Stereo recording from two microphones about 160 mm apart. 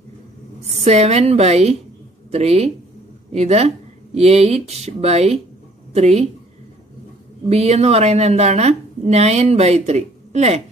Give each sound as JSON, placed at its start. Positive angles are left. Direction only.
{"t": 0.8, "sound": "a woman's voice", "side_deg": -40}
{"t": 7.4, "sound": "a woman's voice", "side_deg": -40}